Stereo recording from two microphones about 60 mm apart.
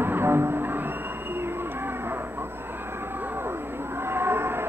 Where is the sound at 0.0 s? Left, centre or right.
Right.